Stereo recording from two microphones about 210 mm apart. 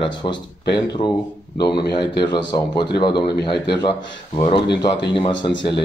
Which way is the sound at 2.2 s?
20° left (ahead or behind).